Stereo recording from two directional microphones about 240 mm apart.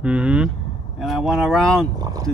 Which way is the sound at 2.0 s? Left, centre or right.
Centre.